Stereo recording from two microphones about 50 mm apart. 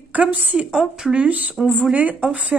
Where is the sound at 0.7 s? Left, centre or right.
Centre.